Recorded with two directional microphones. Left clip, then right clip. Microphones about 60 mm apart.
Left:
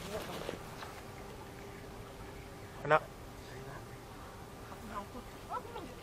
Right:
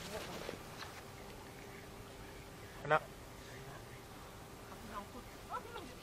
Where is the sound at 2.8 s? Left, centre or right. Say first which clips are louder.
Left 4 dB; centre.